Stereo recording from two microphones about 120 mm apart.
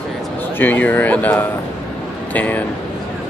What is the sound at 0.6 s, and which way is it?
Speech, 15° left (ahead or behind).